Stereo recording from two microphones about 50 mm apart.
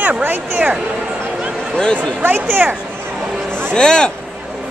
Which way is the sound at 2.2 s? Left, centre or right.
Right.